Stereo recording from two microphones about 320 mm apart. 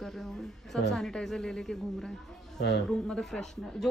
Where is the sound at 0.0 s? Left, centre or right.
Centre.